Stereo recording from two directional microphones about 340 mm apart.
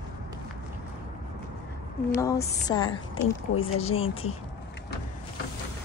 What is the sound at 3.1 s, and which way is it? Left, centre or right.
Speech, left.